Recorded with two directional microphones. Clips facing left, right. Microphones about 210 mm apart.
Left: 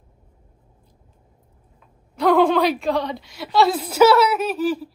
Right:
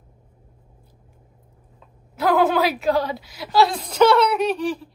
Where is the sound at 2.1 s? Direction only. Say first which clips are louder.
Left 2 dB; 5° right (ahead or behind).